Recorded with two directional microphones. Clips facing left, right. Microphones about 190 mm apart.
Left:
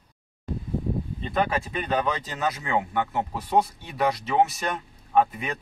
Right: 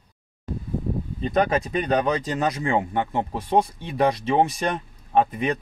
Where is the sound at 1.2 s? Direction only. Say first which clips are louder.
Right 6 dB; 40° right (ahead or behind).